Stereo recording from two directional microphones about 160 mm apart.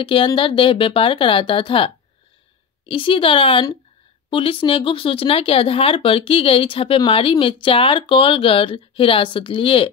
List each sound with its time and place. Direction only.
0.0 s speech: 30° left (ahead or behind)
2.9 s speech: 35° left (ahead or behind)